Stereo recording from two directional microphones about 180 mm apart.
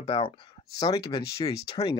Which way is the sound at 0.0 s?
35° left (ahead or behind).